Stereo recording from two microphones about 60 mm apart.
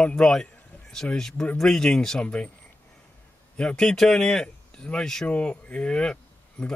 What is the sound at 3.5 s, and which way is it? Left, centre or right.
Speech, centre.